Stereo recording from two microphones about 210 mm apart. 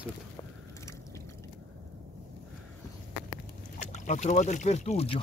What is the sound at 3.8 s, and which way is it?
Speech, 35° left (ahead or behind).